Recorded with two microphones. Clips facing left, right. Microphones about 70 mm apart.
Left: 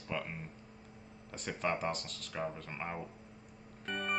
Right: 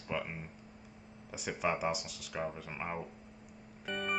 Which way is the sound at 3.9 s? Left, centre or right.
Centre.